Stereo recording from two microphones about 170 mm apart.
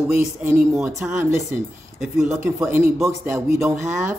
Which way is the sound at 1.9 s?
Centre (ahead or behind).